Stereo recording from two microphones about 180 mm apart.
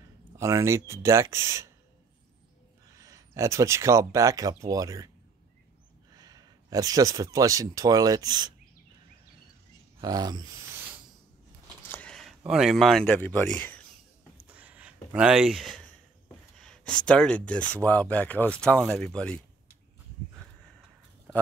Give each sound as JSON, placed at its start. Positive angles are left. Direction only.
{"t": 0.4, "sound": "speech", "side_deg": -15}
{"t": 3.0, "sound": "speech", "side_deg": -20}
{"t": 6.1, "sound": "speech", "side_deg": -20}
{"t": 9.9, "sound": "speech", "side_deg": -20}
{"t": 11.8, "sound": "speech", "side_deg": 10}
{"t": 14.5, "sound": "a sound", "side_deg": -10}
{"t": 16.5, "sound": "speech", "side_deg": 0}